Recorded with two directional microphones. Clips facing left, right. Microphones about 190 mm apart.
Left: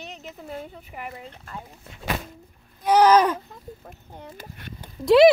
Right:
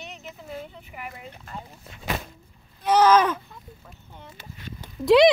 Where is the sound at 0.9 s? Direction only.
35° left (ahead or behind).